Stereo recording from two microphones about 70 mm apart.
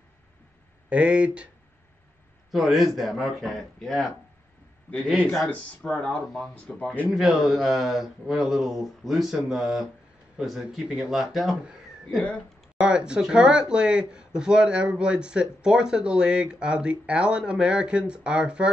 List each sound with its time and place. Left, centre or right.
0.8 s speech: centre
2.5 s a man's voice: centre
5.0 s speech: centre
5.5 s speech: centre
6.2 s a man's voice: centre
6.5 s speech: centre
7.1 s a man's voice: centre
11.6 s a sound: centre
12.7 s speech: centre